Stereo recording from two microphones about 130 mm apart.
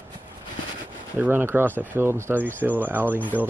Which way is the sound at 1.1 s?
15° right (ahead or behind).